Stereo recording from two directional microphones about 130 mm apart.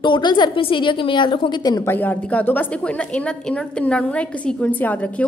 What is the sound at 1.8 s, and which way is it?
A woman's voice, 15° left (ahead or behind).